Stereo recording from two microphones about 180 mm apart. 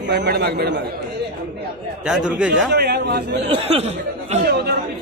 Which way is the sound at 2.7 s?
65° right (ahead or behind).